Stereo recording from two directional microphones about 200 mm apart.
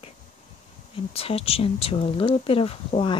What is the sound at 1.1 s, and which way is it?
Speech, 30° left (ahead or behind).